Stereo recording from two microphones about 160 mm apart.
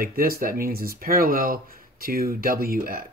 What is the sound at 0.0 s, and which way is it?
Speech, 65° right (ahead or behind).